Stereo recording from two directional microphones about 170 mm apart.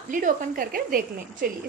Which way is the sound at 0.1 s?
50° right (ahead or behind).